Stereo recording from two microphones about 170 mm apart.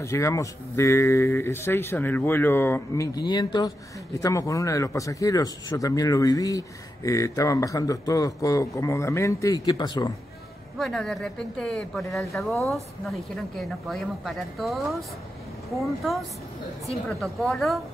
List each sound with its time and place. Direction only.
0.0 s speech: 15° left (ahead or behind)
10.8 s a woman's voice: 5° left (ahead or behind)